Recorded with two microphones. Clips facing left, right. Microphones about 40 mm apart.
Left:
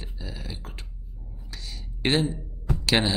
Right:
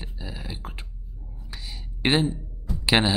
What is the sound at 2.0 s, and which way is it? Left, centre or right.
Speech, centre.